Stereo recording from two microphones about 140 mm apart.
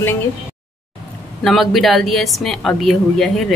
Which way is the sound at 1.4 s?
Centre (ahead or behind).